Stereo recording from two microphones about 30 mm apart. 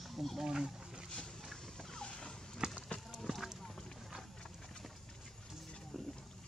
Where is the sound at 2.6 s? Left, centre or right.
Right.